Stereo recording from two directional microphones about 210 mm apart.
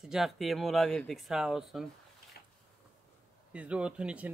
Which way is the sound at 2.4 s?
50° left (ahead or behind).